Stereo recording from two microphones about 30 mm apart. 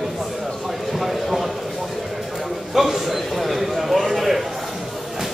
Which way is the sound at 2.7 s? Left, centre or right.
Centre.